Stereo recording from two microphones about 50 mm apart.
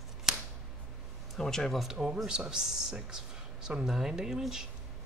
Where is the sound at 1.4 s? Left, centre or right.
Centre.